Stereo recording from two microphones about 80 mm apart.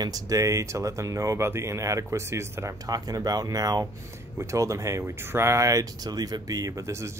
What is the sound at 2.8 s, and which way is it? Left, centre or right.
Speech, right.